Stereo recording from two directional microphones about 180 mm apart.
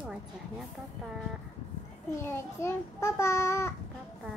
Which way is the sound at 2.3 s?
15° left (ahead or behind).